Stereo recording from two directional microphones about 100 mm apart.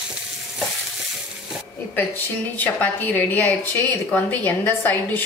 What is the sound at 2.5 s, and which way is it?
A woman's voice, 15° left (ahead or behind).